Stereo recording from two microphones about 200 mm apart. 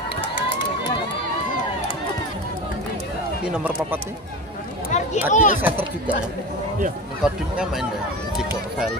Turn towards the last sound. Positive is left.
turn(degrees=-5)  # may be behind; listen again after turning